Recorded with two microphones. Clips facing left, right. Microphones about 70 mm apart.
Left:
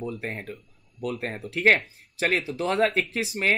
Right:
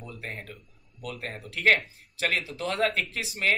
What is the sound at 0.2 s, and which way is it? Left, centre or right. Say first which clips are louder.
Speech: left 5 dB; left.